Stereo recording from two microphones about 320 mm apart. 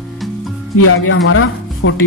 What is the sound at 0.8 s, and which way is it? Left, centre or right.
Speech, left.